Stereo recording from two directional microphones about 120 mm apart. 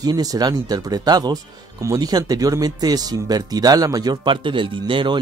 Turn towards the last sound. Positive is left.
turn(degrees=-45)  # may be behind; listen again after turning